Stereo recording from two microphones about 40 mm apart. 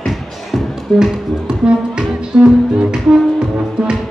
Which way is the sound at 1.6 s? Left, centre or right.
Right.